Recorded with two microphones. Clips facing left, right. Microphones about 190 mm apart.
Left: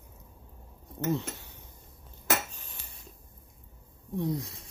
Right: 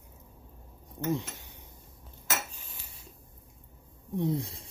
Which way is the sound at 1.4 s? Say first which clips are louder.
Left 1 dB; 15° right (ahead or behind).